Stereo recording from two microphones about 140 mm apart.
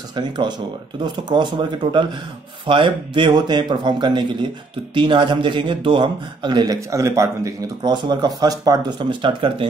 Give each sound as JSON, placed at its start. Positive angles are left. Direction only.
{"t": 0.1, "sound": "speech", "side_deg": -35}